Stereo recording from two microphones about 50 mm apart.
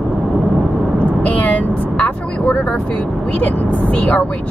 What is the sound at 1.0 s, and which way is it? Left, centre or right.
Vehicle, left.